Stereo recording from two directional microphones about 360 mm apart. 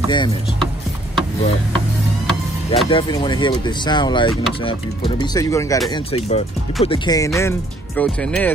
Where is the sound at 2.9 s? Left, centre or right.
Centre.